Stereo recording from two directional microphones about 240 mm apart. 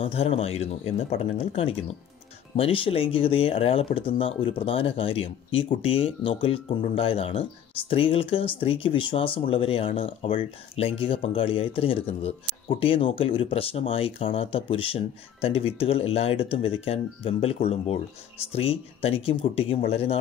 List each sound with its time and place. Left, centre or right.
0.0 s speech: left